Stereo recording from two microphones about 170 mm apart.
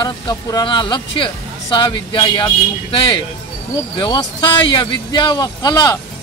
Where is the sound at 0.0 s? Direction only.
25° left (ahead or behind).